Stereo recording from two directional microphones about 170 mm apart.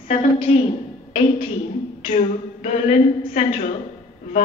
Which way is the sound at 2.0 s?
45° left (ahead or behind).